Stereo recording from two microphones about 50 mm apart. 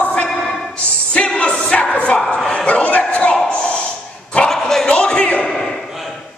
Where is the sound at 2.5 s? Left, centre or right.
Left.